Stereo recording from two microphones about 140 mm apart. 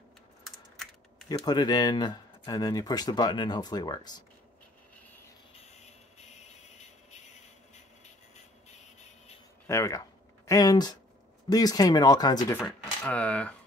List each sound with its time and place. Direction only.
1.3 s speech: 30° left (ahead or behind)
5.5 s music: 50° left (ahead or behind)
8.4 s a sound: 55° left (ahead or behind)
9.7 s a sound: 20° left (ahead or behind)
11.4 s speech: 25° left (ahead or behind)
13.1 s speech: 10° left (ahead or behind)